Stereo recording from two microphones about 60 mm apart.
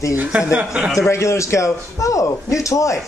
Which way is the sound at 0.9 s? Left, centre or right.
Left.